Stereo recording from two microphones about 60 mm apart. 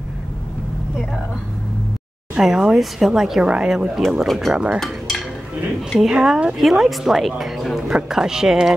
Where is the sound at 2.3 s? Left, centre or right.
Centre.